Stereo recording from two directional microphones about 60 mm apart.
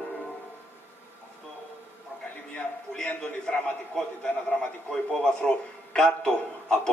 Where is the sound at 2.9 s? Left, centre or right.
Centre.